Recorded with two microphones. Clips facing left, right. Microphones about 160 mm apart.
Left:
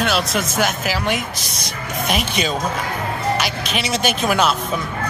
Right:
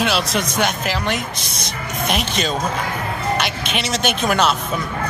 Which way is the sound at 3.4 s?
Centre (ahead or behind).